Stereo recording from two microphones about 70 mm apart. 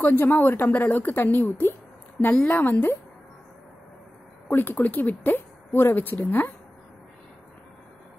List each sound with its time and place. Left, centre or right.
0.0 s a woman's voice: left
4.5 s speech: left